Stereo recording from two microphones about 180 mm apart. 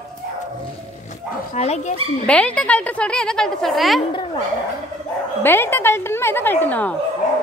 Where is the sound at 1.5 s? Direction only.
35° left (ahead or behind).